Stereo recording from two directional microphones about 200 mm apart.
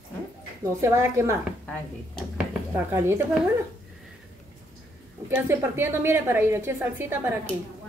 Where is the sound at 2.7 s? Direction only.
10° right (ahead or behind).